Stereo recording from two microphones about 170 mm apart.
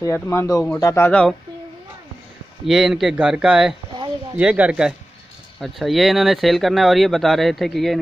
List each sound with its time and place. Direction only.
0.0 s speech: 15° left (ahead or behind)
2.6 s speech: 5° right (ahead or behind)